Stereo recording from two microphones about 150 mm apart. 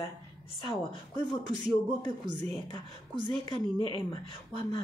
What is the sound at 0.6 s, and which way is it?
Speech, 30° left (ahead or behind).